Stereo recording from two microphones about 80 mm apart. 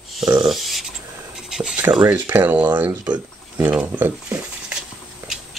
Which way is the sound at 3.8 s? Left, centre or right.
Right.